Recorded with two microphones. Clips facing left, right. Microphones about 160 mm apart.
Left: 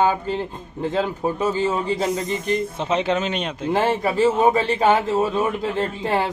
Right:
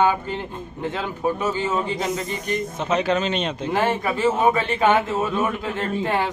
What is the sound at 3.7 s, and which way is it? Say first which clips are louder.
A man's voice: left 3 dB; 30° left (ahead or behind).